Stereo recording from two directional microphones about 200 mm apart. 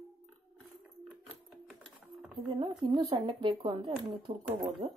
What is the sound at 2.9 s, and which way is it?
Speech, 25° right (ahead or behind).